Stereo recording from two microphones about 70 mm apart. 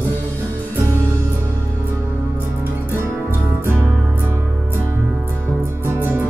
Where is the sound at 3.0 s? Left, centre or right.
Right.